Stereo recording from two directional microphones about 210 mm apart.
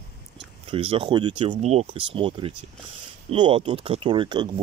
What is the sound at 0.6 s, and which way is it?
Speech, 25° right (ahead or behind).